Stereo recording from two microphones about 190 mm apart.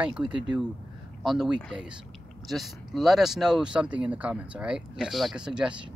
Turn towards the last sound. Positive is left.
turn(degrees=-5)  # may be behind; listen again after turning